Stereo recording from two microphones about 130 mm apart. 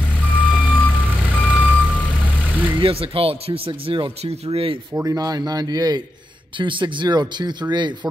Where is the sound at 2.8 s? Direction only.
45° right (ahead or behind).